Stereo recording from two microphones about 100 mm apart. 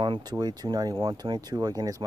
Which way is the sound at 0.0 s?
50° right (ahead or behind).